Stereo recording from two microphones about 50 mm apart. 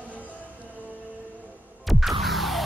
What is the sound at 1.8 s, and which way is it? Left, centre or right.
Music, centre.